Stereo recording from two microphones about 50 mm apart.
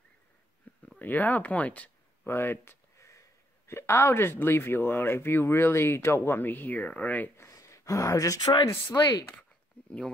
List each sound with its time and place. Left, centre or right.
0.9 s speech: left
2.2 s a sound: left
3.6 s speech: left
7.3 s speech: left
9.8 s speech: left